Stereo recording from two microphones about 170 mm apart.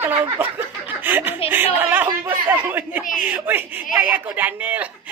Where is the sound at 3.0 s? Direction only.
50° left (ahead or behind).